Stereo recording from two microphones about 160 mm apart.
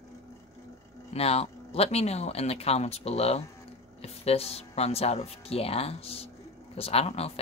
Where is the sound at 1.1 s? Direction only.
40° left (ahead or behind).